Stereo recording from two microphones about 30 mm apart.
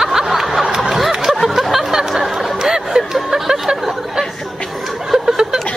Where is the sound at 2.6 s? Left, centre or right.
Right.